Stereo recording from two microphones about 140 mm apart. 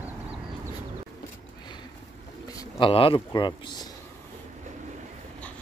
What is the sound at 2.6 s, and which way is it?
Speech, 40° left (ahead or behind).